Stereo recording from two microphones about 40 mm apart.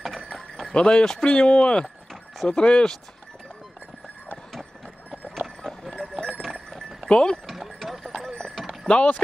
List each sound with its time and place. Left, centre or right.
0.7 s speech: left
5.6 s clip-clop: centre
7.1 s speech: centre
7.4 s clip-clop: centre
8.0 s clip-clop: centre
8.8 s speech: left